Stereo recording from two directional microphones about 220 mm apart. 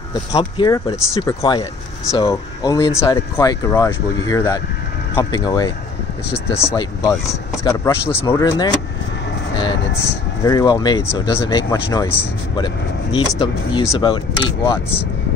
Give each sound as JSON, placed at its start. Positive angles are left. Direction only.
{"t": 0.3, "sound": "speech", "side_deg": 20}
{"t": 6.7, "sound": "speech", "side_deg": 15}
{"t": 10.4, "sound": "speech", "side_deg": 20}